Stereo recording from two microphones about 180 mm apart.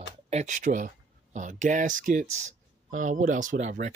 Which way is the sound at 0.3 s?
40° right (ahead or behind).